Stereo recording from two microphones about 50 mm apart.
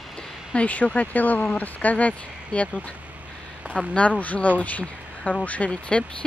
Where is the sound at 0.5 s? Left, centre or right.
Left.